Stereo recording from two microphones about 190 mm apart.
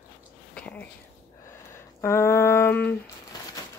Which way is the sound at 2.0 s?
15° left (ahead or behind).